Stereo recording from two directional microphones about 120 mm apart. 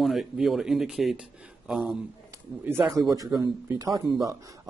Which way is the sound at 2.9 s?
30° right (ahead or behind).